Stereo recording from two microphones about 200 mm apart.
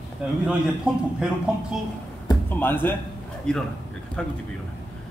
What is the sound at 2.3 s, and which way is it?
Speech, 10° left (ahead or behind).